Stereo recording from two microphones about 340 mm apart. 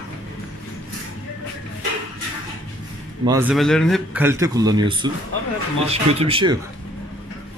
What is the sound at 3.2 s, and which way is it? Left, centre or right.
Speech, centre.